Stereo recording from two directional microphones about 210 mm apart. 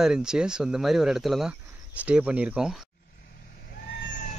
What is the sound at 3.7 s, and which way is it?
Vehicle, 45° left (ahead or behind).